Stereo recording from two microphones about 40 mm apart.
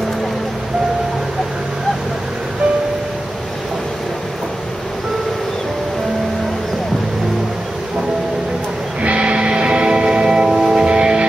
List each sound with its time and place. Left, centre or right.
9.0 s music: right